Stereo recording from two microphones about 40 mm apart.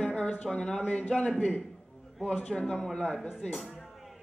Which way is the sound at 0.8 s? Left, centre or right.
Left.